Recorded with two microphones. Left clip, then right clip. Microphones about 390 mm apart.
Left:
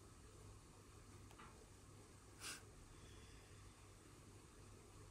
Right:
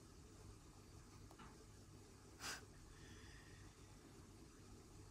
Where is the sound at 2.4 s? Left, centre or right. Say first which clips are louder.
Right 3 dB; right.